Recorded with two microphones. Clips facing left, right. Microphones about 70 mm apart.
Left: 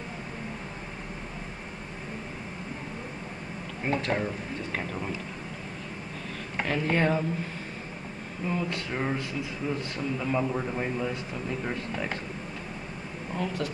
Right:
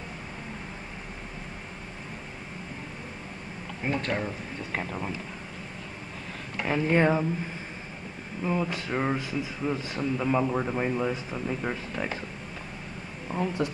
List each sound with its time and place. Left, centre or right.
3.8 s speech: centre
6.6 s a man's voice: centre
8.5 s a man's voice: centre
13.3 s speech: centre